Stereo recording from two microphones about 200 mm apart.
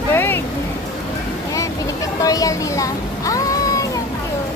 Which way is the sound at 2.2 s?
15° left (ahead or behind).